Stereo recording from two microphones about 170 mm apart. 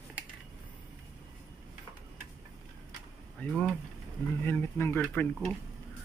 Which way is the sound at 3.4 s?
10° left (ahead or behind).